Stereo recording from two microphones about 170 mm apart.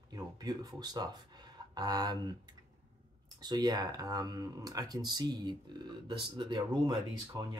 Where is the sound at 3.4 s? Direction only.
25° right (ahead or behind).